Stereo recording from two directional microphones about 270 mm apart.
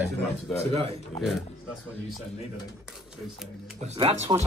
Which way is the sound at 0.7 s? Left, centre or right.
Right.